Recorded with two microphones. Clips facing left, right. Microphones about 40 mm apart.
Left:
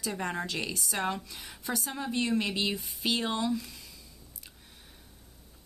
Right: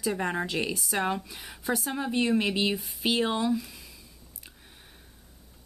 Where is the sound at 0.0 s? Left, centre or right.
Centre.